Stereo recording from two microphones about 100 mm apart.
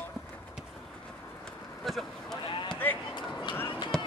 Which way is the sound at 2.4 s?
50° left (ahead or behind).